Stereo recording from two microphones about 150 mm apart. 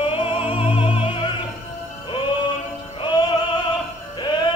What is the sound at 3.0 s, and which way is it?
Music, 30° left (ahead or behind).